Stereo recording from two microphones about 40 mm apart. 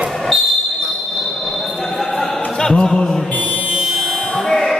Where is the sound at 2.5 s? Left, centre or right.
Centre.